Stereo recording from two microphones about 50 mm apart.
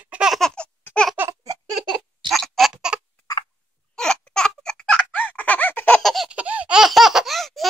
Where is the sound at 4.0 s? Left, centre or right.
Centre.